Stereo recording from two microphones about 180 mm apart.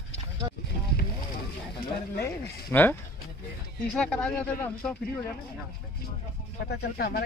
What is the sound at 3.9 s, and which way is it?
Speech, 5° left (ahead or behind).